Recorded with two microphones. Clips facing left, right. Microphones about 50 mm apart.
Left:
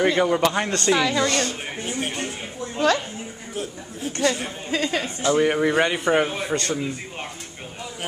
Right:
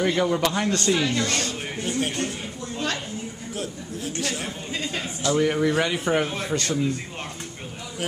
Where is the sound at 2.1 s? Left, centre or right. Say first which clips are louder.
Even; left.